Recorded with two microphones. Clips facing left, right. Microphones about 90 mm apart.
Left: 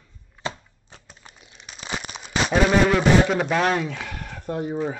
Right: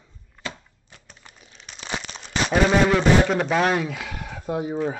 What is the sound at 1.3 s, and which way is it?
Crumpling, 5° left (ahead or behind).